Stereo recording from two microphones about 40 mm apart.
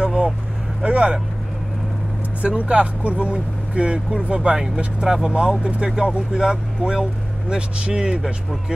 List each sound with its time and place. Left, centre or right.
0.0 s vehicle: right
0.8 s speech: right
2.4 s speech: right